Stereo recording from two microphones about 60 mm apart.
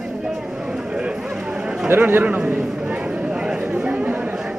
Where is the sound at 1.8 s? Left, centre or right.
Right; by 4.5 s centre.